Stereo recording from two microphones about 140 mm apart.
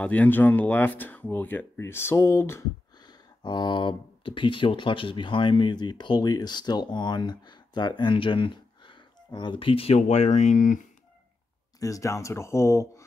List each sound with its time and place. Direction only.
0.0 s speech: 10° left (ahead or behind)
3.1 s speech: 30° left (ahead or behind); by 10.8 s 65° left (ahead or behind)
11.8 s speech: 25° left (ahead or behind)